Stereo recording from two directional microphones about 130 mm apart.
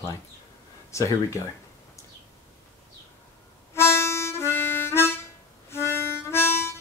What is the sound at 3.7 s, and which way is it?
Harmonica, 20° left (ahead or behind).